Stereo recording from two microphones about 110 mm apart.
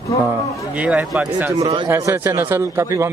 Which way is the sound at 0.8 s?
10° right (ahead or behind).